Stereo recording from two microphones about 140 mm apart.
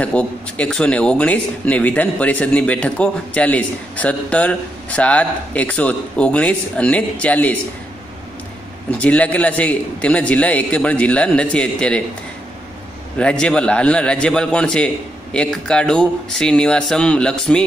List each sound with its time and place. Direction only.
0.0 s speech: 10° left (ahead or behind)
8.9 s speech: 10° left (ahead or behind)
13.2 s speech: 5° left (ahead or behind)